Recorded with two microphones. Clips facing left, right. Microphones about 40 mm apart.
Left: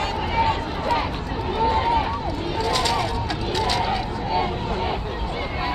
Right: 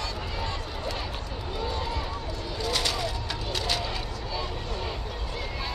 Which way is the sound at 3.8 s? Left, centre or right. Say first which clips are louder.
Left 9 dB; left.